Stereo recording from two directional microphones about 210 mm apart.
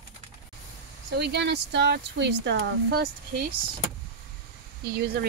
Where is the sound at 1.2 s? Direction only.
55° right (ahead or behind).